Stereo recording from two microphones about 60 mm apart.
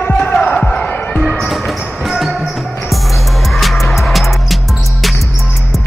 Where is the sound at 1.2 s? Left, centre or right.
Centre.